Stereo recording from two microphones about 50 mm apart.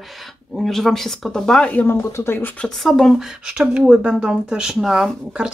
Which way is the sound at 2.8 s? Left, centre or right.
Centre.